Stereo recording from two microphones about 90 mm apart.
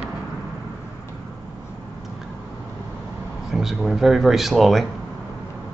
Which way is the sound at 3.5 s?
5° right (ahead or behind).